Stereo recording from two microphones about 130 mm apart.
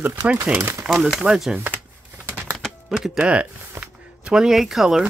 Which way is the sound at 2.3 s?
15° right (ahead or behind).